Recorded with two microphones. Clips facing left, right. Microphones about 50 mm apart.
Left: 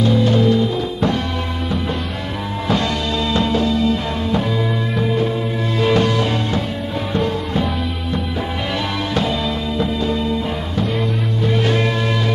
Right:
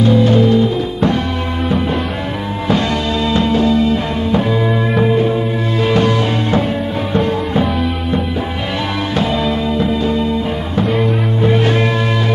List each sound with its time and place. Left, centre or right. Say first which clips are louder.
0.0 s music: right 4 dB; right
3.3 s music: right 5 dB; right
9.8 s music: right 4 dB; right
11.4 s music: right 4 dB; right